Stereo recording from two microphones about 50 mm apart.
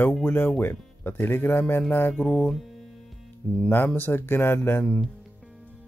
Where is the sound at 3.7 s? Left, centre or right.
Left.